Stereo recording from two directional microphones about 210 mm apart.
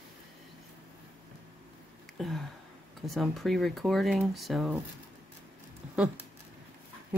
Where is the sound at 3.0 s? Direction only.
Centre (ahead or behind).